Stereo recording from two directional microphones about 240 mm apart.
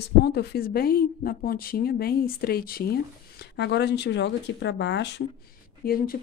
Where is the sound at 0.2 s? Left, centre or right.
Left.